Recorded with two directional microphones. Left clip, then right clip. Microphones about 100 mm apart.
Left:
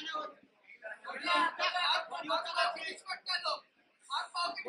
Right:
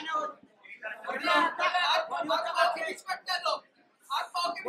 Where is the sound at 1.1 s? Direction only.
25° right (ahead or behind).